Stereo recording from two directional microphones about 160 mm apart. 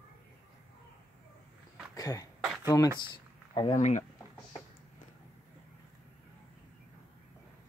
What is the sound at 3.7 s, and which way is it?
Speech, 50° left (ahead or behind).